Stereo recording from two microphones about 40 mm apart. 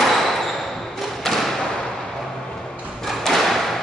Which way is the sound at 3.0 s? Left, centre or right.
Centre.